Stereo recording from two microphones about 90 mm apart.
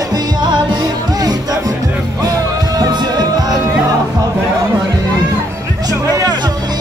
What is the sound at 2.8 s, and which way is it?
Music, 50° right (ahead or behind).